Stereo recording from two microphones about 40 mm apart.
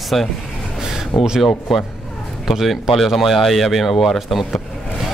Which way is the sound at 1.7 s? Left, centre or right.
Centre.